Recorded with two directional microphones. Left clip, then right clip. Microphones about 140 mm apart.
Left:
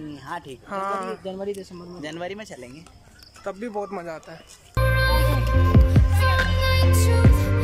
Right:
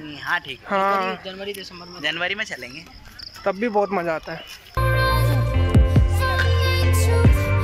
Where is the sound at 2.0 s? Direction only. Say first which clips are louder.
Right 9 dB; 35° left (ahead or behind).